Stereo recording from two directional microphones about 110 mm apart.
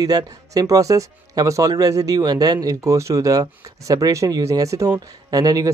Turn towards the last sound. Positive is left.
turn(degrees=-35)  # may be behind; listen again after turning